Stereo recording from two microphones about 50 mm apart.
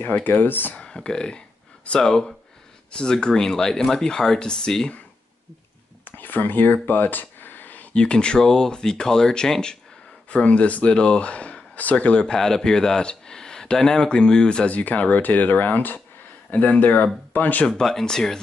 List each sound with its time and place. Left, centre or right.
0.0 s speech: left
0.7 s speech: centre
6.0 s a sound: left
7.9 s speech: centre
10.3 s speech: left
14.7 s speech: left
17.6 s speech: centre